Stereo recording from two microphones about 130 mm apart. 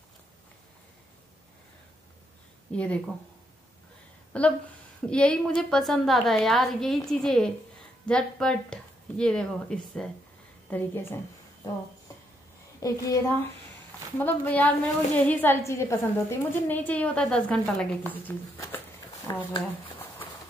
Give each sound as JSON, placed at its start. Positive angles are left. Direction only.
{"t": 2.7, "sound": "a woman's voice", "side_deg": 10}
{"t": 4.3, "sound": "a woman's voice", "side_deg": 10}
{"t": 10.7, "sound": "a woman's voice", "side_deg": 15}
{"t": 12.8, "sound": "a woman's voice", "side_deg": 20}
{"t": 19.3, "sound": "a woman's voice", "side_deg": 30}
{"t": 19.6, "sound": "a sound", "side_deg": 15}